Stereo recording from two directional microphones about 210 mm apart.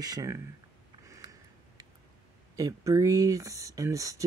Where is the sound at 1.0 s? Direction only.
15° right (ahead or behind).